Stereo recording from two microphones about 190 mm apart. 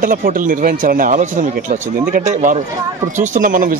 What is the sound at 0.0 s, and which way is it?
Speech, 45° right (ahead or behind).